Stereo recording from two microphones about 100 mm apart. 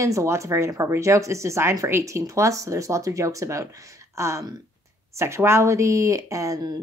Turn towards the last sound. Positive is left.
turn(degrees=-40)  # may be behind; listen again after turning